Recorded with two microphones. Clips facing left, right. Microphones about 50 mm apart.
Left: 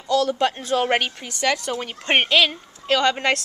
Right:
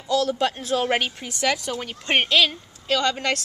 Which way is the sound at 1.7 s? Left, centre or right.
Centre.